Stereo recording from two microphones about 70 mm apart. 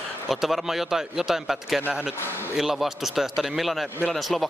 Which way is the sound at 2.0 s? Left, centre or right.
Centre.